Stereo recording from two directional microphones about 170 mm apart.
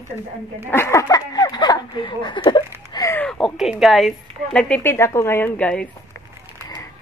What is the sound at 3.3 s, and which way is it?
A woman's voice, centre (ahead or behind).